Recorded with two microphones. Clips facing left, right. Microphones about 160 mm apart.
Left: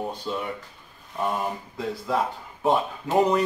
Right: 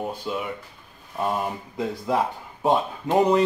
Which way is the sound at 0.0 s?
10° right (ahead or behind).